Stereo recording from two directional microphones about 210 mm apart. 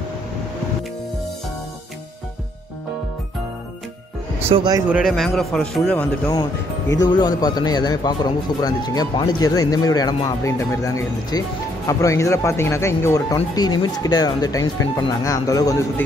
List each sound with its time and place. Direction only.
4.5 s speech: 20° right (ahead or behind)
4.8 s a man's voice: centre (ahead or behind)
6.9 s a man's voice: 20° left (ahead or behind)